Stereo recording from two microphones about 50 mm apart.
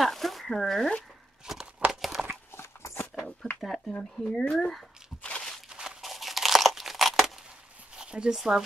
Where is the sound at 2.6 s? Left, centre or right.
Left.